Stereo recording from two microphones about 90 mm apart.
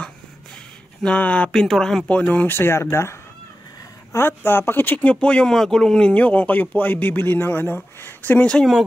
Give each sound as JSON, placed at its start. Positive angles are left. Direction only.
{"t": 1.0, "sound": "a man's voice", "side_deg": 15}